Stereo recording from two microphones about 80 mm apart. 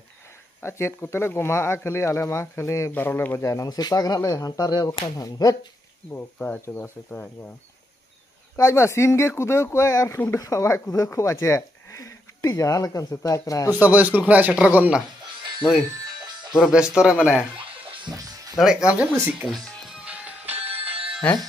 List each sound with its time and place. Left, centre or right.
0.6 s speech: left
2.9 s speech: left
3.3 s speech: left
6.1 s speech: centre
8.5 s speech: left
13.7 s a man's voice: right
18.1 s music: right
18.6 s a man's voice: centre
19.4 s speech: centre
19.9 s music: centre